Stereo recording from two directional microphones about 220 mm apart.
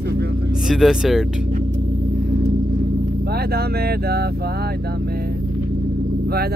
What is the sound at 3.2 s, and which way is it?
Speech, 45° right (ahead or behind).